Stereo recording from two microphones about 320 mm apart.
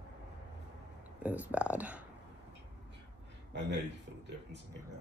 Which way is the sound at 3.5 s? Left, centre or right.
Right.